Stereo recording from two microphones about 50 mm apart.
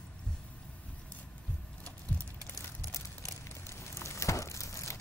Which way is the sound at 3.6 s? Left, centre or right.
Left.